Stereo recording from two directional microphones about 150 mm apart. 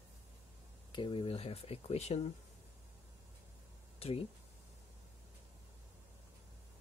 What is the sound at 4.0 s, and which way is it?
Speech, 40° left (ahead or behind).